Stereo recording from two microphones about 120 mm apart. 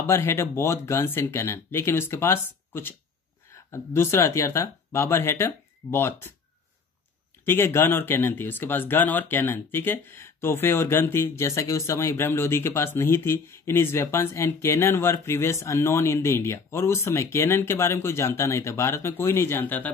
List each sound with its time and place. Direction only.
0.0 s speech: 20° left (ahead or behind)
7.4 s speech: 20° left (ahead or behind)